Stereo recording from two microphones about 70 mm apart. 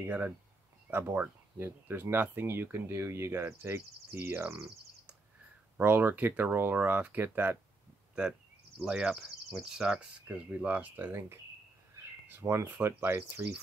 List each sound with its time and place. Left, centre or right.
0.0 s speech: right
5.8 s speech: right
8.1 s a sound: centre
9.1 s speech: centre; by 11.1 s right
12.3 s speech: right
12.6 s speech: right